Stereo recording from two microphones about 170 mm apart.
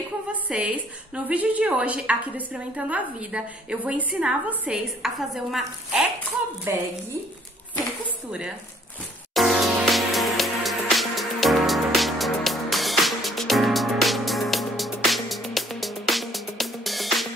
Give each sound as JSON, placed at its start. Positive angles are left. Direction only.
{"t": 0.3, "sound": "a woman's voice", "side_deg": -5}
{"t": 6.7, "sound": "a woman's voice", "side_deg": -15}
{"t": 9.3, "sound": "music", "side_deg": 0}